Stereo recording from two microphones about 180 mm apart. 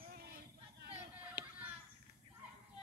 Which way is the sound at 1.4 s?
70° right (ahead or behind).